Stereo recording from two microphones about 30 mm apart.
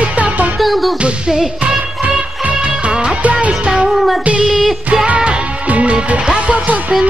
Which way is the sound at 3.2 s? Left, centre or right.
Right.